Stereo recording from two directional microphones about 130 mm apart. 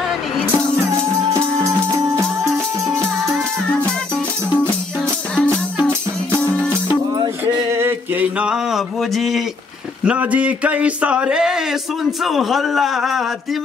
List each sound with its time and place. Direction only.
1.3 s music: 25° right (ahead or behind)
3.3 s music: 5° left (ahead or behind)
5.3 s music: 5° left (ahead or behind)
7.7 s a sound: 15° right (ahead or behind); by 9.4 s centre (ahead or behind)
10.0 s a man's voice: 10° right (ahead or behind)